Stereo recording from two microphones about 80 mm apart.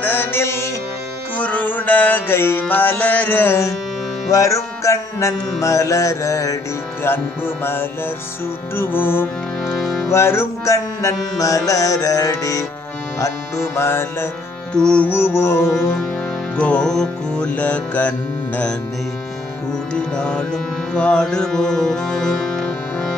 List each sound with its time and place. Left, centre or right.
0.0 s music: left
1.3 s music: centre
4.3 s music: left
7.0 s music: left
9.7 s music: centre
10.0 s music: left
13.2 s music: left
14.7 s music: centre
15.0 s music: left
16.5 s music: centre
19.9 s music: centre